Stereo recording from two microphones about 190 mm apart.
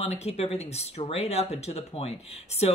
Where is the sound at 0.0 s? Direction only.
35° left (ahead or behind).